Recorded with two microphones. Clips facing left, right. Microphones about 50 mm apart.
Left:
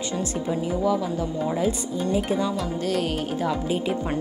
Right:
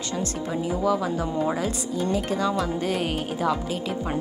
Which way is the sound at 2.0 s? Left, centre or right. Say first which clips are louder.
Left 1 dB; centre.